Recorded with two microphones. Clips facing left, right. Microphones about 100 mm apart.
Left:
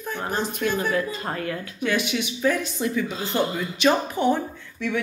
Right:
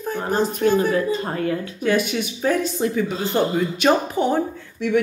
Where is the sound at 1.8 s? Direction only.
45° right (ahead or behind).